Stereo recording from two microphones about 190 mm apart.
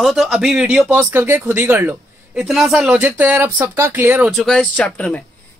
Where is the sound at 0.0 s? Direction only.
Centre (ahead or behind).